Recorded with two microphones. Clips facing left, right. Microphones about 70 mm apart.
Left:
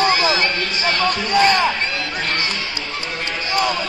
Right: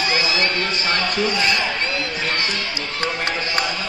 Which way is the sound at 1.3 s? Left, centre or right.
Left.